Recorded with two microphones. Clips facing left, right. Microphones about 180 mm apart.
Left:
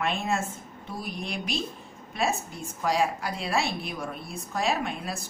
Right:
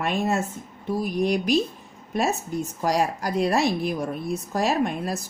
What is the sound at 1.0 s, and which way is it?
A woman's voice, 45° right (ahead or behind).